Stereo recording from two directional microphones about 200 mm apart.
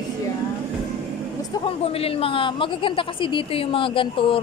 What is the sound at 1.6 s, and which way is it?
Speech, 30° left (ahead or behind).